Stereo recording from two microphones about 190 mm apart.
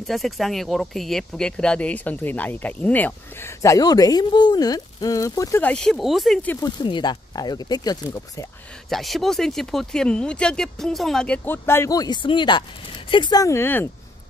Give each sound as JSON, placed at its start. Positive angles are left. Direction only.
{"t": 0.0, "sound": "speech", "side_deg": 0}
{"t": 6.6, "sound": "speech", "side_deg": 25}
{"t": 8.8, "sound": "speech", "side_deg": 0}